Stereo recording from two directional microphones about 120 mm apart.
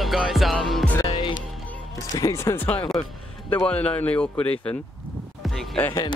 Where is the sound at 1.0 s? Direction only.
35° left (ahead or behind).